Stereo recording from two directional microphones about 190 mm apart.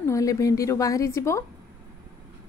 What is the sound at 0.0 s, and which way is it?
A woman's voice, 15° left (ahead or behind).